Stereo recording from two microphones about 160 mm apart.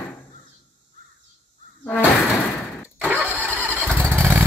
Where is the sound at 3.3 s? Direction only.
10° right (ahead or behind).